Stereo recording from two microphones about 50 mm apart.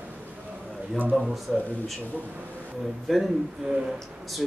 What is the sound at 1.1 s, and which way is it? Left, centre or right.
Speech, centre.